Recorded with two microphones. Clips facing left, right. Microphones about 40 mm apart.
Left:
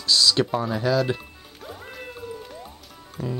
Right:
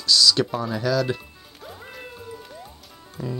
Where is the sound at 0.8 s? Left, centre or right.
Left.